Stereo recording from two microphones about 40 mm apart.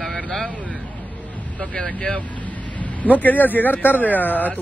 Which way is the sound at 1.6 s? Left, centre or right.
Left.